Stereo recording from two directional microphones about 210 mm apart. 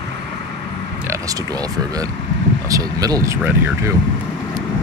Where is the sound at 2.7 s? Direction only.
15° right (ahead or behind).